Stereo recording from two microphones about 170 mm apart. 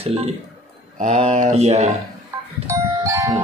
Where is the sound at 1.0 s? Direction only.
45° right (ahead or behind).